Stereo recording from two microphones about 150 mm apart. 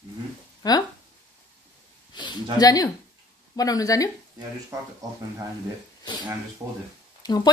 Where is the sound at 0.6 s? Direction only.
25° left (ahead or behind).